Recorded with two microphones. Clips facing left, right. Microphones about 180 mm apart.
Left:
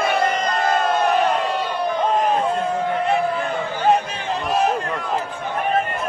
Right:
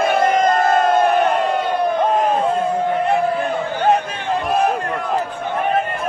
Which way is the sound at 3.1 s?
55° right (ahead or behind).